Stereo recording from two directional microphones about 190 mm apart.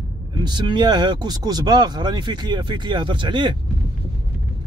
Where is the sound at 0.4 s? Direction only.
25° right (ahead or behind).